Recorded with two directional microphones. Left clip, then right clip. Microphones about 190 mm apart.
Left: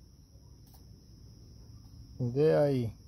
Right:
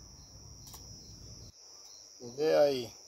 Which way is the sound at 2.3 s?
15° left (ahead or behind).